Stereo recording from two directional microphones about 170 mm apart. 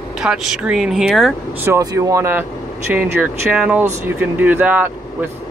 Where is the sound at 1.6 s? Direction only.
20° right (ahead or behind).